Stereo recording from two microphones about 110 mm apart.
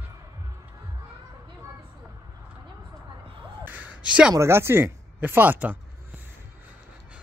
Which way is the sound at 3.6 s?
15° right (ahead or behind).